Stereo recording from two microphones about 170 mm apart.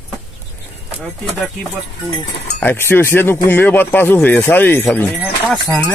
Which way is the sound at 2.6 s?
10° left (ahead or behind).